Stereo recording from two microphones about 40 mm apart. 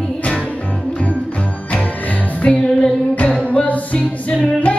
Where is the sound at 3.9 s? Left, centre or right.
Left.